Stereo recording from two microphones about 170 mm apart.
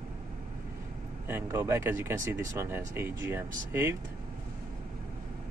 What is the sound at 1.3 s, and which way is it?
Speech, 15° right (ahead or behind).